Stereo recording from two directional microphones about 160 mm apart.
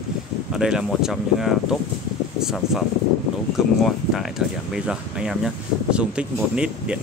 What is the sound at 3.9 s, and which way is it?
Speech, centre (ahead or behind).